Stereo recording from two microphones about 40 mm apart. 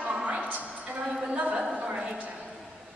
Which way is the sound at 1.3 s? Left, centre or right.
Right.